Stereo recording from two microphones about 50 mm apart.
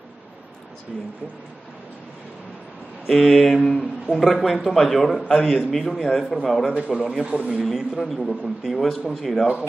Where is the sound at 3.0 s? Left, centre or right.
Centre.